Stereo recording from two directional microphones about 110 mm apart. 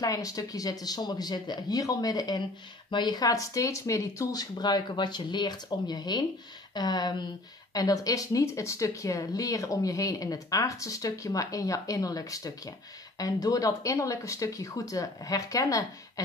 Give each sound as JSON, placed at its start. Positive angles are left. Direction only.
{"t": 0.0, "sound": "speech", "side_deg": 30}